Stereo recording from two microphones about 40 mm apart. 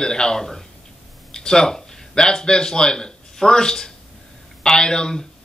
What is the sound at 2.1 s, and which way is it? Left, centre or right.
A man's voice, centre.